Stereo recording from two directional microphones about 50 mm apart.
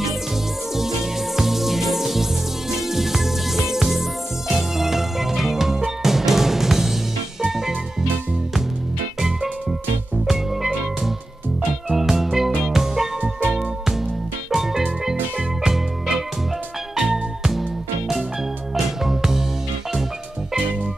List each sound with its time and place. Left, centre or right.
0.7 s music: centre
9.2 s music: centre
13.2 s music: right
13.6 s music: centre